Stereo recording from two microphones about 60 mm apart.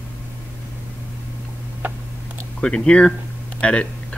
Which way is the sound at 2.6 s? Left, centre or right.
Centre.